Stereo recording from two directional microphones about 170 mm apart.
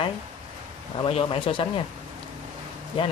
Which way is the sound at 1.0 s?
35° left (ahead or behind).